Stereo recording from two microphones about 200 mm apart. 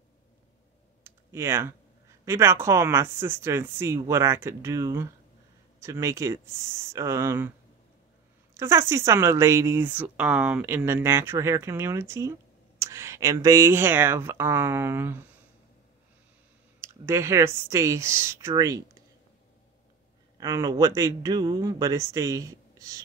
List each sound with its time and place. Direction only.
1.0 s typing: 15° right (ahead or behind)
2.2 s speech: 10° right (ahead or behind)
8.5 s speech: 15° right (ahead or behind)
16.8 s speech: 10° right (ahead or behind)
20.3 s speech: 20° right (ahead or behind)